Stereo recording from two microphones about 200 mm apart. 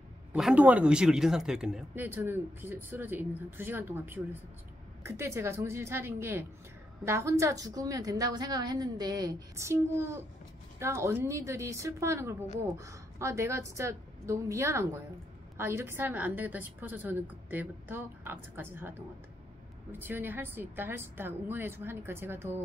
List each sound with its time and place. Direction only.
0.3 s speech: 5° right (ahead or behind)